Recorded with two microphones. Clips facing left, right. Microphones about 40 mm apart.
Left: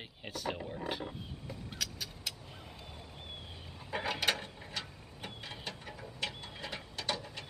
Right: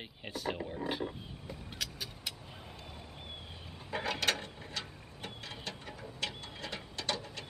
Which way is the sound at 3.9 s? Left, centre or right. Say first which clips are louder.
Even; centre.